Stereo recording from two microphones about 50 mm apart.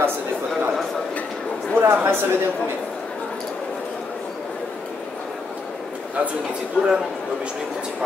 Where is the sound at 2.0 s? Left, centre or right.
Right.